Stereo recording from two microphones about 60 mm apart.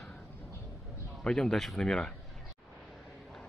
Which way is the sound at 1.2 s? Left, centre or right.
Centre.